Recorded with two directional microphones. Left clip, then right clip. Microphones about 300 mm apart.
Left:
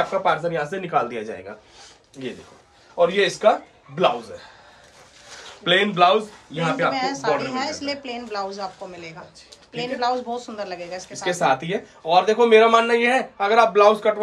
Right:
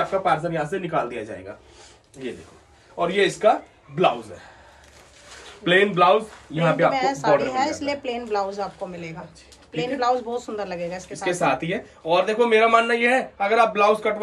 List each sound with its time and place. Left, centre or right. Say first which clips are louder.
0.2 s speech: left 1 dB; centre
3.2 s speech: right 4 dB; centre
5.6 s a woman's voice: even; centre